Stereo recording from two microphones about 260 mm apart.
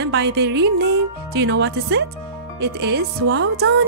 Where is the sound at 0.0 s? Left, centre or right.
Right.